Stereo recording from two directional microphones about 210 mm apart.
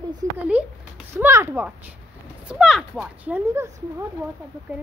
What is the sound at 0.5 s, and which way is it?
Speech, 5° right (ahead or behind).